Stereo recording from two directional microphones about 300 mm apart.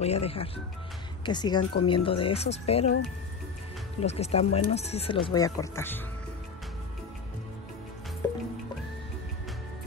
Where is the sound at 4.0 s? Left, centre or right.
Left.